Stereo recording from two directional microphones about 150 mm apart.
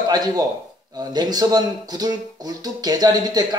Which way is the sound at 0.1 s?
25° right (ahead or behind).